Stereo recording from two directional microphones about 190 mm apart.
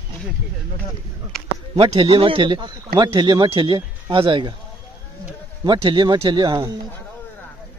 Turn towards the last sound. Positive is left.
turn(degrees=-20)  # may be behind; listen again after turning